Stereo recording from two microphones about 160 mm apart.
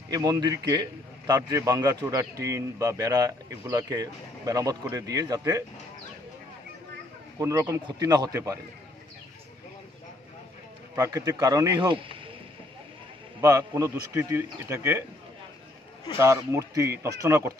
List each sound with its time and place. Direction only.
0.1 s a man's voice: 25° right (ahead or behind)
7.3 s a man's voice: 20° right (ahead or behind)
11.0 s a man's voice: 20° right (ahead or behind)
13.4 s a man's voice: 20° right (ahead or behind)
16.2 s a man's voice: 20° right (ahead or behind)